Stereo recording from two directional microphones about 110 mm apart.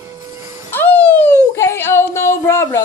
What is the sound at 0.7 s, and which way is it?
A woman's voice, 15° left (ahead or behind).